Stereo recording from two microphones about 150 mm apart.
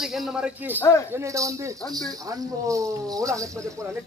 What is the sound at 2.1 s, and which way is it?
Speech, 20° right (ahead or behind).